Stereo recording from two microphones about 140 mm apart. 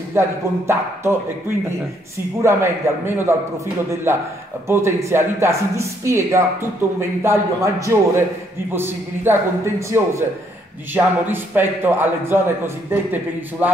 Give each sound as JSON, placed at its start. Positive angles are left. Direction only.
{"t": 0.2, "sound": "a man's voice", "side_deg": -20}
{"t": 2.4, "sound": "a man's voice", "side_deg": -15}